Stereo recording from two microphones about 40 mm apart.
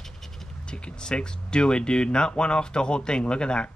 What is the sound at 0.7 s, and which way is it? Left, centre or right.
Speech, left.